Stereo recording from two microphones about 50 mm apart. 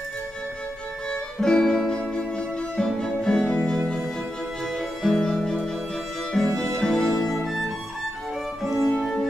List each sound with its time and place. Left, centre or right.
1.4 s music: centre